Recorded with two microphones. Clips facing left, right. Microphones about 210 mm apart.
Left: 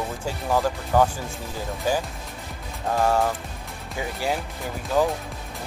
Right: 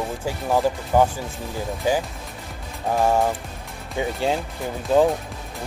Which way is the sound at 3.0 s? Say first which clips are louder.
Right 2 dB; 15° right (ahead or behind).